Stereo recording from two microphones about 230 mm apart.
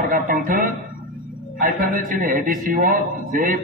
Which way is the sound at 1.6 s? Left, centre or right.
Right.